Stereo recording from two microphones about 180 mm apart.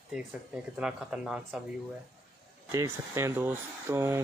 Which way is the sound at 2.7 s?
15° right (ahead or behind).